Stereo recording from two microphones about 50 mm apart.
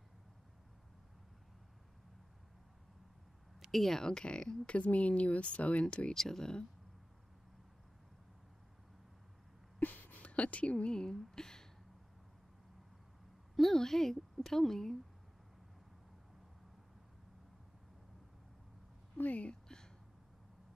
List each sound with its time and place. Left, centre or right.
3.7 s speech: centre
4.0 s speech: centre
6.1 s a woman's voice: centre
9.8 s a sound: left; by 11.1 s centre
11.1 s speech: centre
13.6 s a woman's voice: centre
19.1 s speech: left